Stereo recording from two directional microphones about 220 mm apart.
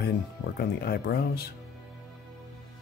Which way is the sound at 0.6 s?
45° left (ahead or behind).